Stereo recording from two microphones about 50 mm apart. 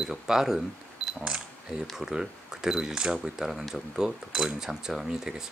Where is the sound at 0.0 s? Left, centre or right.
Centre.